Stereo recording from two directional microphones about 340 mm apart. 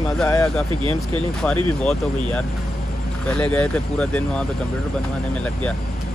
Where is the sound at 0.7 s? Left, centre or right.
Centre.